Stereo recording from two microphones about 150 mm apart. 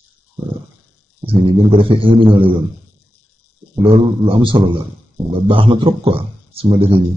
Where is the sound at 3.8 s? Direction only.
35° right (ahead or behind).